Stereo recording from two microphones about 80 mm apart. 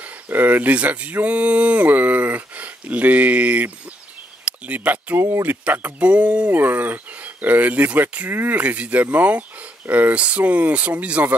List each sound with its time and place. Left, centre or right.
0.3 s speech: right